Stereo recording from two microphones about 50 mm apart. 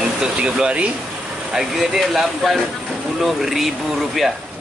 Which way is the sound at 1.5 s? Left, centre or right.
Centre.